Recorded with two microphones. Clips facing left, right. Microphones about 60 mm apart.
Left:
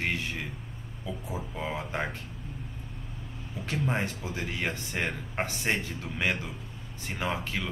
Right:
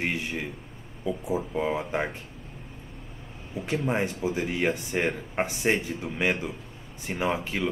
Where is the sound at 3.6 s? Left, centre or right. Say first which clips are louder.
Right 5 dB; right.